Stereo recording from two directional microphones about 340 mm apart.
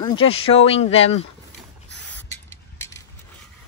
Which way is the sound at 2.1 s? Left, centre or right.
Centre.